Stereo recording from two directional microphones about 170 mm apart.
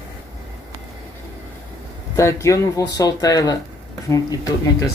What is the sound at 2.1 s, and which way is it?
Speech, 15° left (ahead or behind).